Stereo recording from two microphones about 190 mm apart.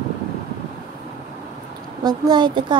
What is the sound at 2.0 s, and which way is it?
Speech, 20° right (ahead or behind).